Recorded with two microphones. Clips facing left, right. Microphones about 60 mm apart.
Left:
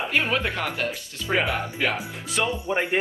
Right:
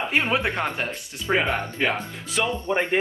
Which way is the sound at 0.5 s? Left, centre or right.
Right.